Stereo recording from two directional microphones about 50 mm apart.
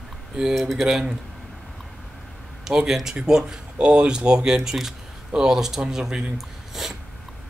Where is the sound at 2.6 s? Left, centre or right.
Centre.